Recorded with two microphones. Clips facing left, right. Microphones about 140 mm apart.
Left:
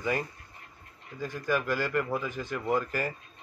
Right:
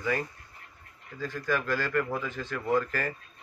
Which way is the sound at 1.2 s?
15° left (ahead or behind).